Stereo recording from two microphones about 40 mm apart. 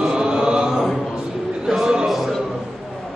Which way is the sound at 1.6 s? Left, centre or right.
Centre.